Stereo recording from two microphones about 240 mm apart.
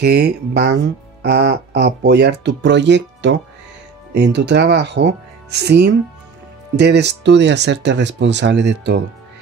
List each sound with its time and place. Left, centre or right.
0.0 s speech: right